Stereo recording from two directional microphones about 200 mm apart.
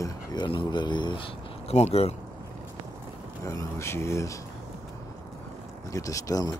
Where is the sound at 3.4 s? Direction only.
15° left (ahead or behind).